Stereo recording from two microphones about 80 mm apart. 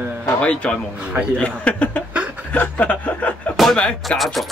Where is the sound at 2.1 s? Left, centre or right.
Centre.